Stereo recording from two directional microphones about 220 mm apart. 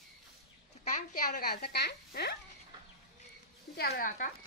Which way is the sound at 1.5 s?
45° left (ahead or behind).